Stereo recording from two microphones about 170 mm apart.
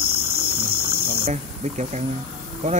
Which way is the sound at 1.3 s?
45° right (ahead or behind).